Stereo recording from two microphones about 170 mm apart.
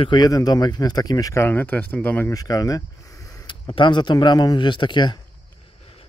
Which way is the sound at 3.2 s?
20° left (ahead or behind).